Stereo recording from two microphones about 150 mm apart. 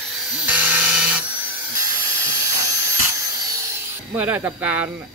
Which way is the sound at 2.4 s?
20° right (ahead or behind).